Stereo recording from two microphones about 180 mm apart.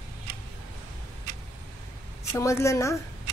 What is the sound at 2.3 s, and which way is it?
Speech, 15° left (ahead or behind).